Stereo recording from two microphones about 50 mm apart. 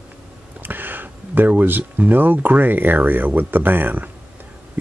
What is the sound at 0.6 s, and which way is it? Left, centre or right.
Speech, right.